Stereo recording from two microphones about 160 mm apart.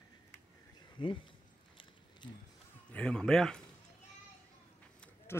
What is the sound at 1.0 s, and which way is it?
Speech, 30° left (ahead or behind).